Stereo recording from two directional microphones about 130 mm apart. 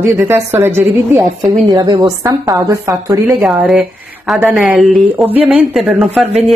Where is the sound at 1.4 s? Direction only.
30° right (ahead or behind).